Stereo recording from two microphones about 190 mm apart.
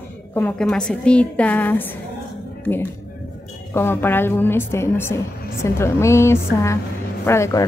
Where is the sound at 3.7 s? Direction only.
10° left (ahead or behind).